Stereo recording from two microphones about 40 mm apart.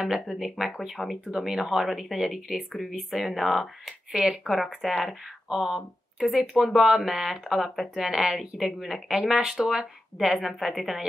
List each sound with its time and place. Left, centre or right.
0.3 s speech: centre
4.1 s speech: right
10.6 s speech: centre